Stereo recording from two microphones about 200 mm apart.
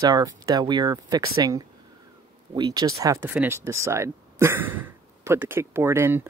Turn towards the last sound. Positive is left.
turn(degrees=-10)  # may be behind; listen again after turning